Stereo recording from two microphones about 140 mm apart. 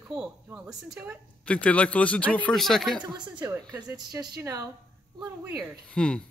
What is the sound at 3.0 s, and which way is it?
Speech, 10° right (ahead or behind).